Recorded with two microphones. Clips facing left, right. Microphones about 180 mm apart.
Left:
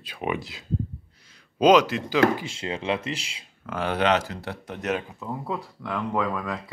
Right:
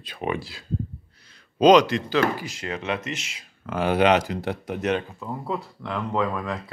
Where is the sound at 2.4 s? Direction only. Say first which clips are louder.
Left 1 dB; 30° left (ahead or behind).